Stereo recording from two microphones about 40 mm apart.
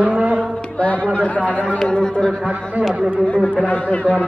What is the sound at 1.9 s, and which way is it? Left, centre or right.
Speech, left.